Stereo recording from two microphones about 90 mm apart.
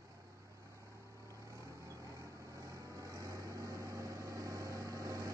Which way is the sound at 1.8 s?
35° right (ahead or behind).